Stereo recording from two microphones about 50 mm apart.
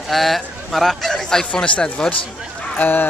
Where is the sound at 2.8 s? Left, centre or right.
Left.